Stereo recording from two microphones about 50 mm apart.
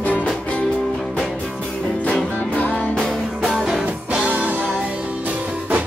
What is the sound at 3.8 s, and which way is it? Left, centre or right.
Music, right.